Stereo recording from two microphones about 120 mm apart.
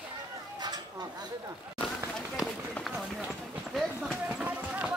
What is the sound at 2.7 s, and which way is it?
Run, centre (ahead or behind).